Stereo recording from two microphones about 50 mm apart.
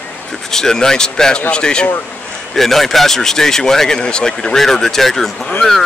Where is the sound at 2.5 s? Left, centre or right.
Centre.